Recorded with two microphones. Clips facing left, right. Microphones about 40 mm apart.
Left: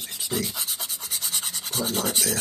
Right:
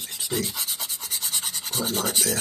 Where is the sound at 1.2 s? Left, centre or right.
Centre.